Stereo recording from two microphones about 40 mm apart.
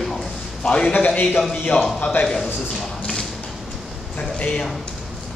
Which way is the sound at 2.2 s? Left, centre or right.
Left.